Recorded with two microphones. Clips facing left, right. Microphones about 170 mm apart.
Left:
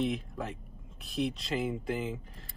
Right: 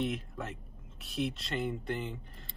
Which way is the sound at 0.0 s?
Centre (ahead or behind).